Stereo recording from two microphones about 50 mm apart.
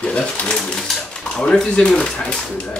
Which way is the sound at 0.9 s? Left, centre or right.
Centre.